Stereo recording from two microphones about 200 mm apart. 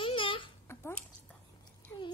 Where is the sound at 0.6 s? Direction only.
10° left (ahead or behind).